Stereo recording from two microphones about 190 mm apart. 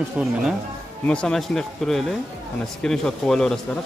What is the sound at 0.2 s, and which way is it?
Speech, 5° right (ahead or behind).